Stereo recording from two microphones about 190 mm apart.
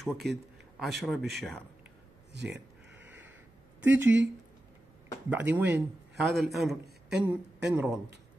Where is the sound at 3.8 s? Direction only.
10° right (ahead or behind).